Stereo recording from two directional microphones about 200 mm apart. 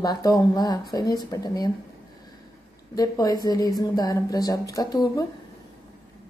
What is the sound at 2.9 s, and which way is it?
Speech, 20° left (ahead or behind).